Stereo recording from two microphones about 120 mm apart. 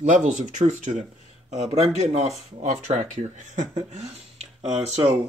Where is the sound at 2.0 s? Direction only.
65° right (ahead or behind); by 4.1 s 80° right.